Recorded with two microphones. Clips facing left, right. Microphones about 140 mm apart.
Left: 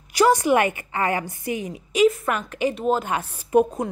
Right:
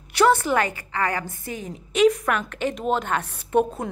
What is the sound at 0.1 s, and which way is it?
A woman's voice, 10° left (ahead or behind).